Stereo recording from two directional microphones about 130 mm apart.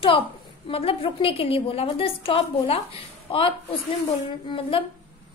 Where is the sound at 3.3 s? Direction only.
40° left (ahead or behind).